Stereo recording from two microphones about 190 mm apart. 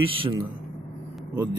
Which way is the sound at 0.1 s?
30° right (ahead or behind).